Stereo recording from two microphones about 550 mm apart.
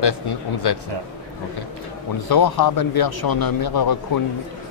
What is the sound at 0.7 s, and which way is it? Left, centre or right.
Speech, left.